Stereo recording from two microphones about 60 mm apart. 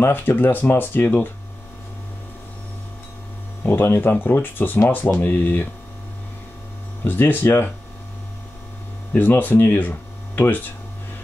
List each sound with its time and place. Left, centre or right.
0.0 s speech: left
3.6 s speech: left
7.1 s speech: left
9.1 s speech: left